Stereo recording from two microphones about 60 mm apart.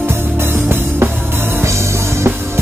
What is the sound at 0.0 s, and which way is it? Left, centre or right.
Music, right.